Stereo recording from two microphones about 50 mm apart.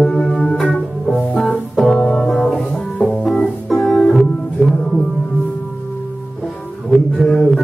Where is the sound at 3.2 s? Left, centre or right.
Centre.